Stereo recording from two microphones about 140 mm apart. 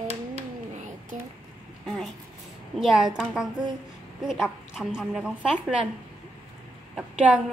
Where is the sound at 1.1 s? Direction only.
70° right (ahead or behind).